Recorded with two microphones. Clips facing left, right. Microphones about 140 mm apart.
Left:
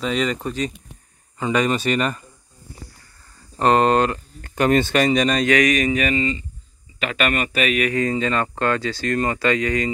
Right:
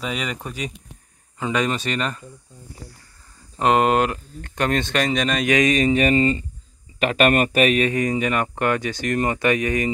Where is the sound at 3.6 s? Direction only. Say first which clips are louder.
Left 1 dB; 5° right (ahead or behind).